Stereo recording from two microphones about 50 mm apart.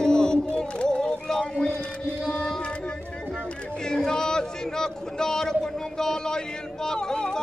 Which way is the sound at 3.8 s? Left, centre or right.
Centre.